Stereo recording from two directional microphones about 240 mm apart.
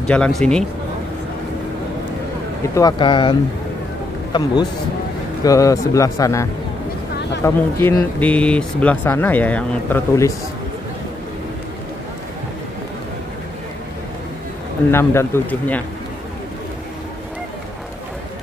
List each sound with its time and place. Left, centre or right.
0.0 s speech: centre
2.7 s speech: centre
14.9 s speech: centre